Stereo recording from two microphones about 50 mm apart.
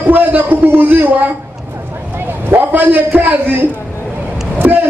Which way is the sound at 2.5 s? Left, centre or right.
Right.